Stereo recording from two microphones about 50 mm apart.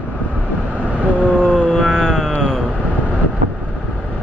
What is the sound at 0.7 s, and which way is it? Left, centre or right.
Vehicle, right.